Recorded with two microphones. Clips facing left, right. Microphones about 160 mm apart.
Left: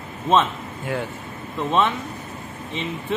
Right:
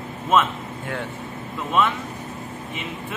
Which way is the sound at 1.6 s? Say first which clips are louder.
Left 1 dB; 25° left (ahead or behind).